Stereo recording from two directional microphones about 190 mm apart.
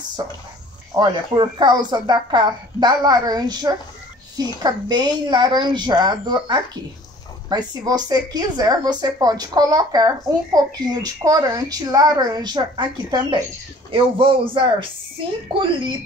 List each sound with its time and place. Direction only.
0.2 s a woman's voice: 20° right (ahead or behind)